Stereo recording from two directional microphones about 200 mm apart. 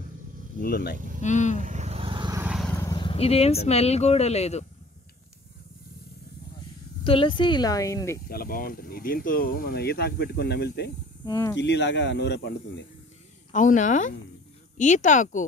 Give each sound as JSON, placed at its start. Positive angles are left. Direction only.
{"t": 0.6, "sound": "speech", "side_deg": 50}
{"t": 0.9, "sound": "speech", "side_deg": -40}
{"t": 1.2, "sound": "speech", "side_deg": 35}
{"t": 1.6, "sound": "vehicle", "side_deg": -35}
{"t": 2.5, "sound": "vehicle", "side_deg": 5}
{"t": 2.8, "sound": "speech", "side_deg": 20}
{"t": 7.1, "sound": "speech", "side_deg": 25}
{"t": 8.3, "sound": "speech", "side_deg": 45}
{"t": 11.2, "sound": "speech", "side_deg": 20}
{"t": 11.5, "sound": "speech", "side_deg": 60}
{"t": 13.5, "sound": "speech", "side_deg": 40}